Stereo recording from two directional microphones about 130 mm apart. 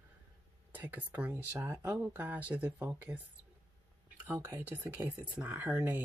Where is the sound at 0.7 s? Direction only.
15° right (ahead or behind).